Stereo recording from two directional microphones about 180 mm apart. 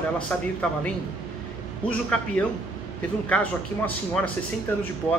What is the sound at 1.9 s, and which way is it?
Speech, 5° left (ahead or behind).